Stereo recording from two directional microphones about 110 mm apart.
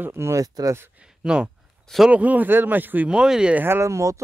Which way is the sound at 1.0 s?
5° right (ahead or behind).